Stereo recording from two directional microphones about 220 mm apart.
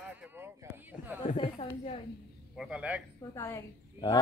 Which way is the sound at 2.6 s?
5° right (ahead or behind).